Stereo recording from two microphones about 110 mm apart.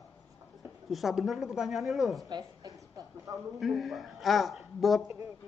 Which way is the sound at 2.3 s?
35° right (ahead or behind).